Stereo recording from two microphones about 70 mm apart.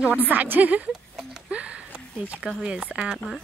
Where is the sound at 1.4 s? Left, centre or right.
Centre.